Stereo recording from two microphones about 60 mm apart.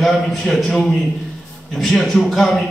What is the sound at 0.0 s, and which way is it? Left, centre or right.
A man's voice, centre.